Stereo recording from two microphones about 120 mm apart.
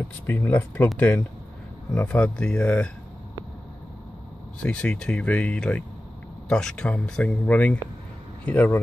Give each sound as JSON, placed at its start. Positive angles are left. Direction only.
{"t": 0.3, "sound": "speech", "side_deg": 15}
{"t": 4.6, "sound": "speech", "side_deg": 10}